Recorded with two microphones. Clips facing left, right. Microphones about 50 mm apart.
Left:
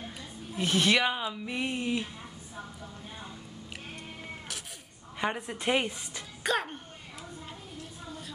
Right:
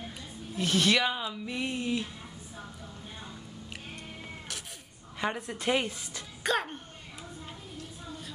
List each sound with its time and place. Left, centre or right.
0.6 s speech: left
5.1 s speech: centre
6.4 s a sound: centre